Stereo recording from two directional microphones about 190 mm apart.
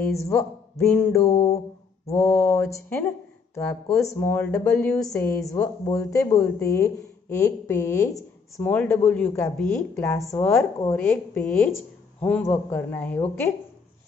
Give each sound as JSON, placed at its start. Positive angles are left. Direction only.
{"t": 0.1, "sound": "a woman's voice", "side_deg": 15}